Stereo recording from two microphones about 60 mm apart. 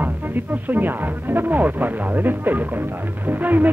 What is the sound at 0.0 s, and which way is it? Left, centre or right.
Speech, right.